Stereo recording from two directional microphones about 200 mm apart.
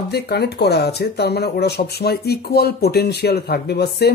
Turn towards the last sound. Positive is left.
turn(degrees=55)  # may be behind; listen again after turning